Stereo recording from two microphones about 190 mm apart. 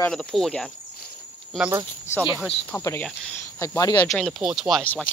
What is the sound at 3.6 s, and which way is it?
Speech, 20° left (ahead or behind).